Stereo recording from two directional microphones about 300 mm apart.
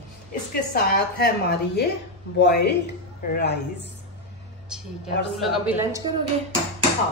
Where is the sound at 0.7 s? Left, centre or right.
Left.